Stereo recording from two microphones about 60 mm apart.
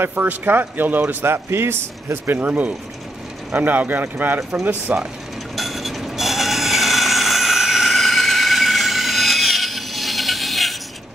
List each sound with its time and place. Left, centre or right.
0.0 s a man's voice: right
5.6 s train: centre